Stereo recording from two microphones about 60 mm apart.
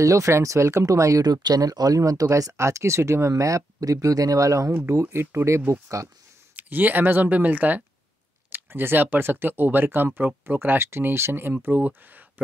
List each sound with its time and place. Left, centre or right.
0.0 s speech: right
5.1 s speech: right
6.5 s speech: right